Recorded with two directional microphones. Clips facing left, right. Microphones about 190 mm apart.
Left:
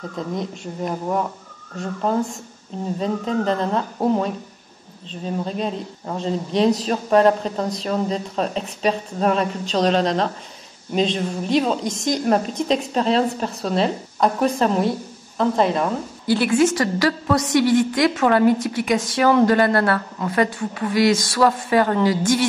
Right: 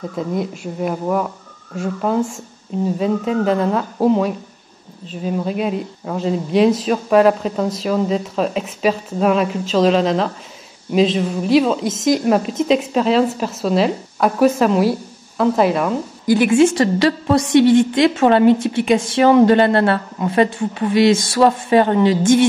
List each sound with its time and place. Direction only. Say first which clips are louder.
0.1 s speech: right 4 dB; 5° right (ahead or behind)
3.0 s a woman's voice: right 2 dB; 5° right (ahead or behind)
16.4 s a woman's voice: right 4 dB; 25° right (ahead or behind)